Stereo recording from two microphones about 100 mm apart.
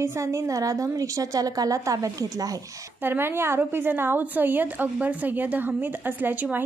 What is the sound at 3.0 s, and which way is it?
A woman's voice, 20° right (ahead or behind).